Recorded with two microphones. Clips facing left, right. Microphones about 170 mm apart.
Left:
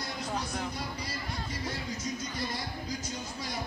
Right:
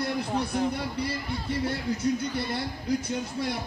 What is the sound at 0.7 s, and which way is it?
Speech, 60° right (ahead or behind).